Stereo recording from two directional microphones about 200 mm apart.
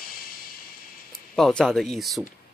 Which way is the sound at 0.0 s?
50° left (ahead or behind).